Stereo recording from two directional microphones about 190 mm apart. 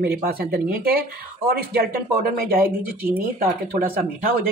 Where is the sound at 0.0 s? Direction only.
55° right (ahead or behind).